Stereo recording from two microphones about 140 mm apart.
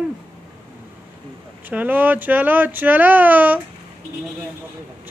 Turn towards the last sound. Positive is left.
turn(degrees=-10)  # may be behind; listen again after turning